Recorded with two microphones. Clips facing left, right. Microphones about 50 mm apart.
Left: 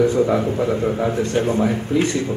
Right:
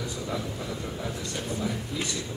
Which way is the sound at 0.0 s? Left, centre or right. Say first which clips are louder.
Left 16 dB; left.